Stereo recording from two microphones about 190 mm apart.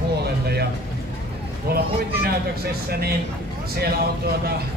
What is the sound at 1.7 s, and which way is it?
Speech, 55° right (ahead or behind).